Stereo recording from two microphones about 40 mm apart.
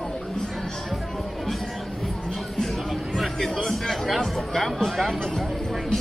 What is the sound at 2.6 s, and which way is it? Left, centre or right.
Music, centre.